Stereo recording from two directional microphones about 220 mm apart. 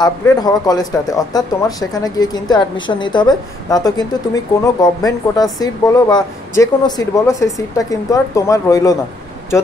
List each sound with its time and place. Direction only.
0.0 s speech: 15° left (ahead or behind)